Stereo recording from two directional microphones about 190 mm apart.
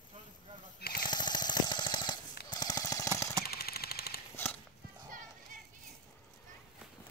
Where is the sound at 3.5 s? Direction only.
55° left (ahead or behind).